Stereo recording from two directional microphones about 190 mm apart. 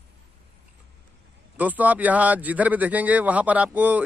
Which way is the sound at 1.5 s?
10° right (ahead or behind).